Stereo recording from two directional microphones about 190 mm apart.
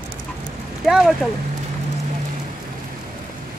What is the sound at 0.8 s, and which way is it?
Speech, centre (ahead or behind).